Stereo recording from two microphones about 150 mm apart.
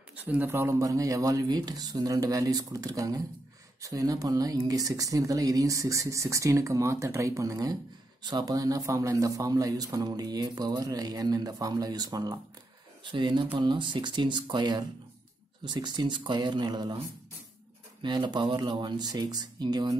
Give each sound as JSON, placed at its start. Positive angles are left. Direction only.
{"t": 0.1, "sound": "a man's voice", "side_deg": -10}
{"t": 18.0, "sound": "a man's voice", "side_deg": -30}